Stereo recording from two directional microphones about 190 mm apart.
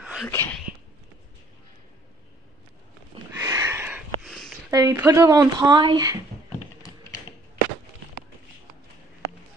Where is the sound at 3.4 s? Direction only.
15° right (ahead or behind); by 4.6 s centre (ahead or behind).